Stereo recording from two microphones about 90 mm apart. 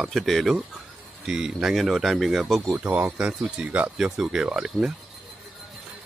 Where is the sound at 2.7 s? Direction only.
20° right (ahead or behind).